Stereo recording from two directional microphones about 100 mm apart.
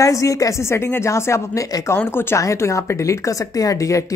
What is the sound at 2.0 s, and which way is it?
Speech, 25° left (ahead or behind).